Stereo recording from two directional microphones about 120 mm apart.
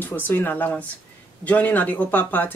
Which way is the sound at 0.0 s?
15° left (ahead or behind).